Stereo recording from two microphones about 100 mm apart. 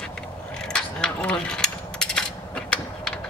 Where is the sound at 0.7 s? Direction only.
10° left (ahead or behind).